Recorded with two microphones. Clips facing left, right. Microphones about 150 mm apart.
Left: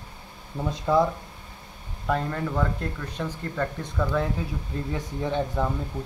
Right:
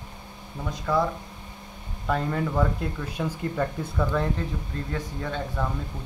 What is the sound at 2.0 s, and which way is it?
Speech, centre (ahead or behind).